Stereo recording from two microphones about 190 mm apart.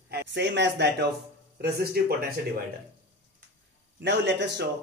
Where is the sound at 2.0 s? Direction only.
55° right (ahead or behind).